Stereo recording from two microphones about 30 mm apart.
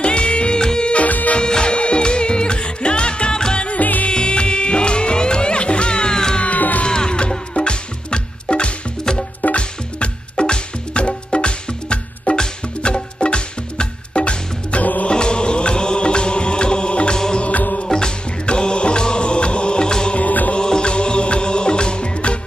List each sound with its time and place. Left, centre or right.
0.0 s music: left
1.0 s music: left
1.4 s music: left
3.8 s music: left
4.1 s music: left
14.8 s music: left
15.0 s music: left
20.2 s music: left
20.5 s music: left